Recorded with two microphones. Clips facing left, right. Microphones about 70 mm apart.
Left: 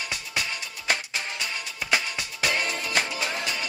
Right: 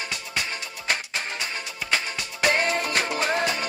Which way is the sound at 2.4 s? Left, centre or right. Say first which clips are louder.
Right 5 dB; right.